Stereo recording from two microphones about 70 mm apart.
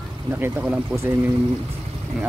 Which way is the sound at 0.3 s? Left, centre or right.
Right.